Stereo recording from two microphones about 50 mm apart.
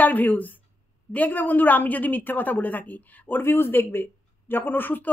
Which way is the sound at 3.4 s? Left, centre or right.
Left.